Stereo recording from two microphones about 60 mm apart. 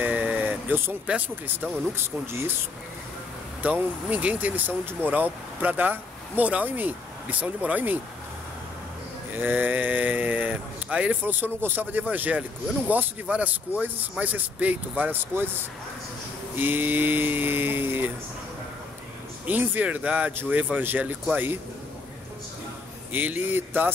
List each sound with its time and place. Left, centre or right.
0.0 s vehicle: right
1.0 s speech: right
1.5 s cattle: right
3.6 s speech: right
9.3 s speech: right
14.2 s cattle: right
19.4 s speech: right
20.7 s cattle: right
23.1 s cattle: right